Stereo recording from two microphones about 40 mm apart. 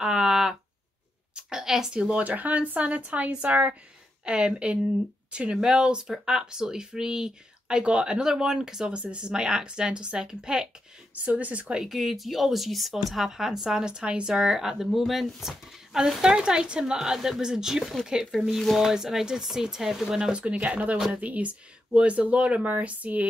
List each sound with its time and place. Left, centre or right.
0.0 s a sound: centre
2.0 s speech: right
2.2 s speech: right
4.2 s speech: right
8.9 s speech: right
11.2 s speech: right
11.8 s speech: centre
18.3 s speech: centre
18.8 s speech: centre
20.2 s speech: right